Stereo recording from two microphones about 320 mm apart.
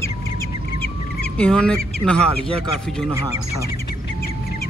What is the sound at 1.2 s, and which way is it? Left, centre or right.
Speech, centre.